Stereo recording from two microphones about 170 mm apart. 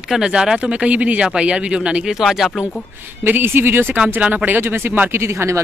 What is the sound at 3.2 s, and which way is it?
Speech, 10° right (ahead or behind).